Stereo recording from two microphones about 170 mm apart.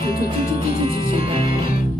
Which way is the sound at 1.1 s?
35° right (ahead or behind).